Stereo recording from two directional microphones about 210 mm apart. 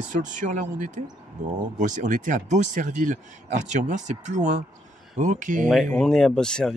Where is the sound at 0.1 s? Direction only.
35° right (ahead or behind).